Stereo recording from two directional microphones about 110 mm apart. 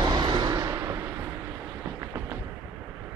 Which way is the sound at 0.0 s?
40° right (ahead or behind).